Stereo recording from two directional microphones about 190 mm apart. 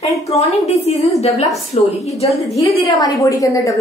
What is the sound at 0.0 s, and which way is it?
A woman's voice, 35° left (ahead or behind).